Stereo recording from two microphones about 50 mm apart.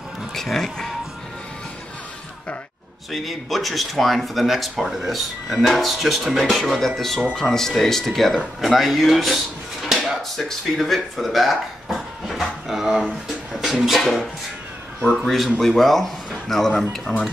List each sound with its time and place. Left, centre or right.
0.3 s speech: centre
3.1 s speech: centre